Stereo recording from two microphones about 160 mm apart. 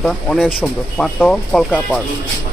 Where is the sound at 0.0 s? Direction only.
Centre (ahead or behind).